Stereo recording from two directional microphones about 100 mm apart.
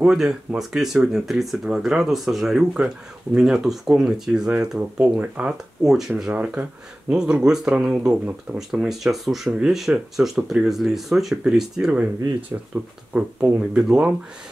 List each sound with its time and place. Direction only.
0.0 s speech: 5° right (ahead or behind)
12.7 s speech: 25° right (ahead or behind)
13.1 s speech: 10° right (ahead or behind)